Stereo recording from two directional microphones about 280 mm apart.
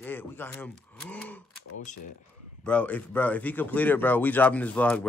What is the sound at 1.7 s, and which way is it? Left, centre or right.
Speech, left.